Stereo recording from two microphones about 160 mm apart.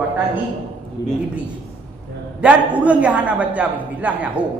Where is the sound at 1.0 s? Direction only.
90° left.